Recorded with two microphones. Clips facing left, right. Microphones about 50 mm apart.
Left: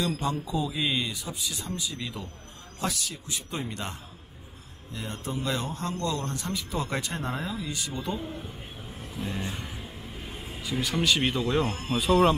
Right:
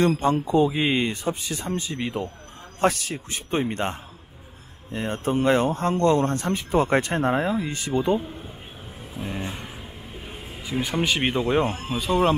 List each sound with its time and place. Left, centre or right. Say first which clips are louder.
0.0 s speech: right 8 dB; right
9.1 s vehicle: right 2 dB; right
10.6 s speech: right 3 dB; right
11.9 s speech: left 2 dB; centre